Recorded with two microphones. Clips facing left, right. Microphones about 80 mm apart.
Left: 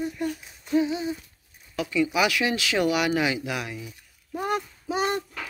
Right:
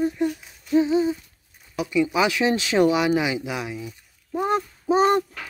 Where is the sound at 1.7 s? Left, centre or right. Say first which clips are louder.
Right 2 dB; centre.